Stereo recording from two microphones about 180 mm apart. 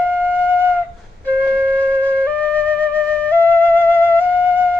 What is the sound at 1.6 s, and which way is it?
Flute, 10° left (ahead or behind).